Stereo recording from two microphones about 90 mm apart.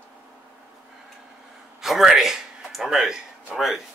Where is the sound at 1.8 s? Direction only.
5° right (ahead or behind).